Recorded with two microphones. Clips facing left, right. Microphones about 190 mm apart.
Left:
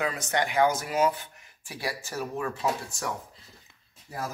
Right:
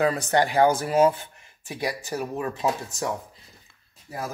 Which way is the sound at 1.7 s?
20° right (ahead or behind).